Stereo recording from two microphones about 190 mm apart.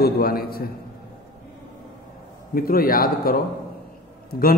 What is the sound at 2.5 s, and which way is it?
A man's voice, 50° left (ahead or behind).